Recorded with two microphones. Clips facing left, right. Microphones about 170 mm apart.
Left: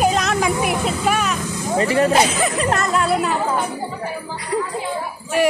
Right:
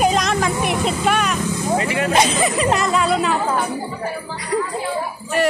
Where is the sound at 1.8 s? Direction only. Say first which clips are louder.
Left 9 dB; 35° left (ahead or behind).